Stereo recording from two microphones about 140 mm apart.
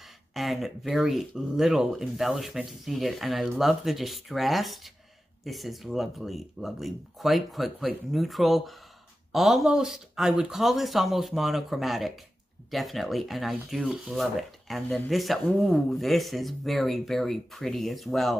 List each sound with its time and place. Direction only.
0.3 s speech: centre (ahead or behind)